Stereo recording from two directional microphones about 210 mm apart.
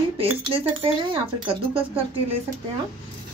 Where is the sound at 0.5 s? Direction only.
25° right (ahead or behind).